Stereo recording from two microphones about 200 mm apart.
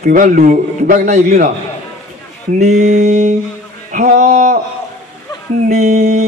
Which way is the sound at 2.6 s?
40° right (ahead or behind).